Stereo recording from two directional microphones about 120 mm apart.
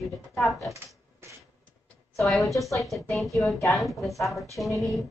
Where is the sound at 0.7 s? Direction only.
20° right (ahead or behind).